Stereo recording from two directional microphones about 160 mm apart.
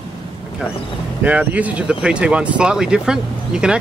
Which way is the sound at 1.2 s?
10° right (ahead or behind).